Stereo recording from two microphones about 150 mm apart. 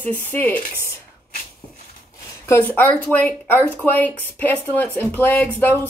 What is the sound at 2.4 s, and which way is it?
Speech, 15° left (ahead or behind).